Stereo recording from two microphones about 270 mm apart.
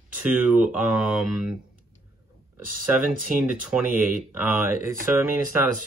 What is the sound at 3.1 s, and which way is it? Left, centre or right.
Speech, right.